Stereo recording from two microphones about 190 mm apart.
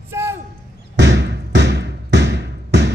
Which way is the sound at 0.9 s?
65° right (ahead or behind).